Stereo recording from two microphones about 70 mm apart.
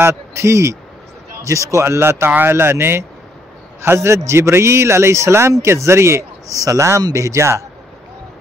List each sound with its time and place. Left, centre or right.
0.0 s a man's voice: right